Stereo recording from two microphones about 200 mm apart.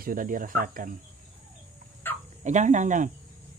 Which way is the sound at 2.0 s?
10° left (ahead or behind).